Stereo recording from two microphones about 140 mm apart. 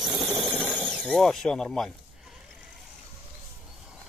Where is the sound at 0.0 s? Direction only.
5° right (ahead or behind).